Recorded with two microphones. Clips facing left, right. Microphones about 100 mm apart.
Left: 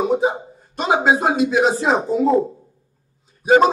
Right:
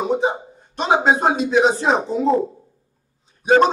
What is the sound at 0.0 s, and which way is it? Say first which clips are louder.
A man's voice: left 2 dB; centre (ahead or behind).